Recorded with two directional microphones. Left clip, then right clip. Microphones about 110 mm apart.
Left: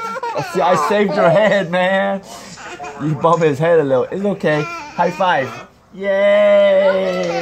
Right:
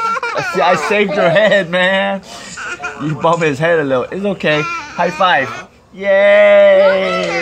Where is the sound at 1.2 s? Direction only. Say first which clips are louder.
Right 2 dB; 40° left (ahead or behind).